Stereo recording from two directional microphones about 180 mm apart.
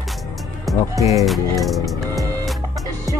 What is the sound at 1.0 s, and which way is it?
Music, 20° right (ahead or behind).